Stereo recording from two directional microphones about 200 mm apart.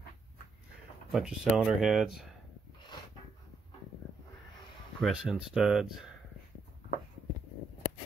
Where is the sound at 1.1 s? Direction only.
Centre (ahead or behind).